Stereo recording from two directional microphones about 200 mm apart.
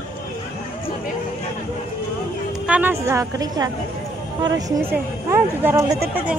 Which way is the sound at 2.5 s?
5° right (ahead or behind).